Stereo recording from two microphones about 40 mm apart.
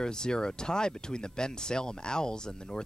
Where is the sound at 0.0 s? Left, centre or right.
Centre.